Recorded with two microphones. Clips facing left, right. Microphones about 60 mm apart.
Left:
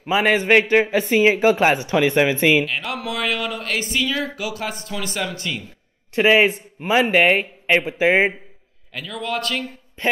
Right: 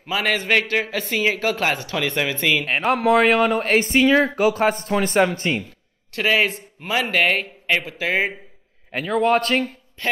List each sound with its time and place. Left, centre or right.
0.0 s a man's voice: centre
2.9 s speech: right
6.1 s a man's voice: left
8.9 s speech: right
10.0 s a man's voice: left